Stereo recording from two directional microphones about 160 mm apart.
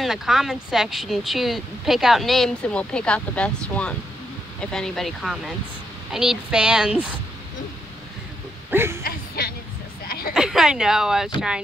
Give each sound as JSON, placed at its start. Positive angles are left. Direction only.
{"t": 0.0, "sound": "speech", "side_deg": 0}
{"t": 8.6, "sound": "speech", "side_deg": -15}
{"t": 9.0, "sound": "music", "side_deg": 75}
{"t": 10.0, "sound": "a sound", "side_deg": 70}
{"t": 10.3, "sound": "speech", "side_deg": -5}